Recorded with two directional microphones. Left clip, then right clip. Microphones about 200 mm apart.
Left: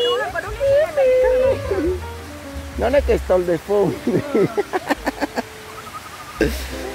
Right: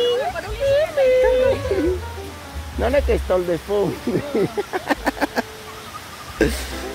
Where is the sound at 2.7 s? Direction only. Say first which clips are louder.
Left 2 dB; 10° left (ahead or behind).